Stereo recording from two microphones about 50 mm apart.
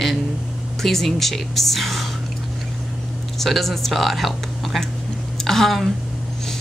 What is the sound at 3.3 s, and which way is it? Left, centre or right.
Speech, centre.